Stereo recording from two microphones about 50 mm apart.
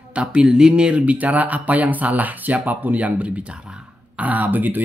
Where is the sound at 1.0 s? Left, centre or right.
Right.